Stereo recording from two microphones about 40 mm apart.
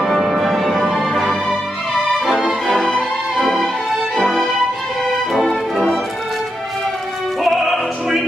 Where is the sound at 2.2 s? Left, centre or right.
Centre.